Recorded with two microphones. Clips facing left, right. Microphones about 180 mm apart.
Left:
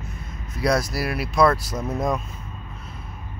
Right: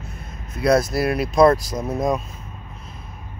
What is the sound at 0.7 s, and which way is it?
Speech, 25° right (ahead or behind).